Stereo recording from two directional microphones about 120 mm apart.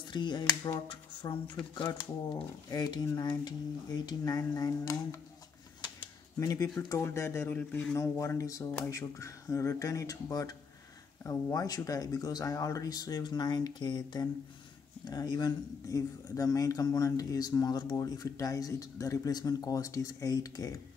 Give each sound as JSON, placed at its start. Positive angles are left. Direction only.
{"t": 0.1, "sound": "speech", "side_deg": 40}
{"t": 6.4, "sound": "speech", "side_deg": 30}